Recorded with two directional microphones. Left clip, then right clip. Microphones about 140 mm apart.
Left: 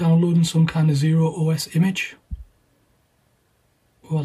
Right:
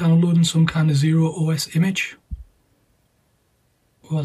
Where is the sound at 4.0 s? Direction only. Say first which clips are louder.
Even; 15° left (ahead or behind).